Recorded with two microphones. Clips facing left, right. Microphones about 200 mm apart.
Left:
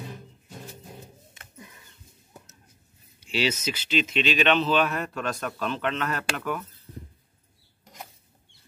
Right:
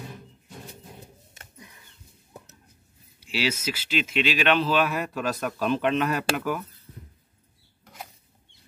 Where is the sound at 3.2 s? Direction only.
5° right (ahead or behind).